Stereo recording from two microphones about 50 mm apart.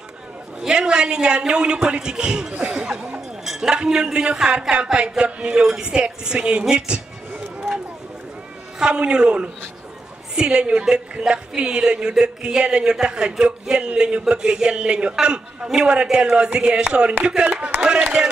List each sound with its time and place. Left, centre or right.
0.7 s a woman's voice: centre
3.4 s chink: centre
3.7 s a woman's voice: centre
6.6 s a sound: centre
8.7 s a man's voice: centre